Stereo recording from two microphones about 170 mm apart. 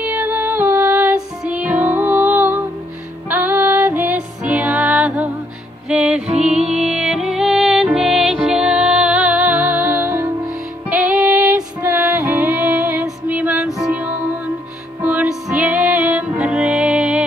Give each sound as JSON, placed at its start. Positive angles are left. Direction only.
{"t": 0.0, "sound": "music", "side_deg": -10}